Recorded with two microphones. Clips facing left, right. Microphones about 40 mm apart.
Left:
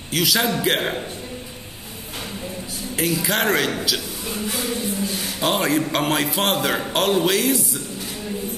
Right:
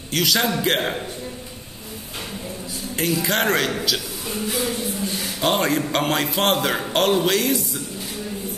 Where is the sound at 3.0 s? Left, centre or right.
Centre.